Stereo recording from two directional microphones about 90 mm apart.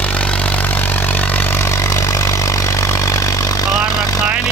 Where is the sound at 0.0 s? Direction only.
15° left (ahead or behind); by 4.2 s 40° left (ahead or behind).